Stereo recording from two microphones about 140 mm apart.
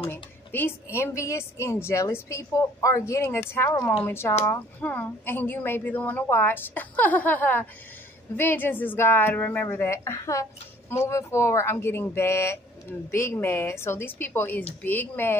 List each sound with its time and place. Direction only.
0.1 s a woman's voice: 15° left (ahead or behind)